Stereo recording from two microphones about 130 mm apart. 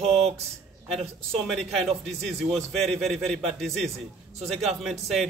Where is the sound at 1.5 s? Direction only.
5° left (ahead or behind).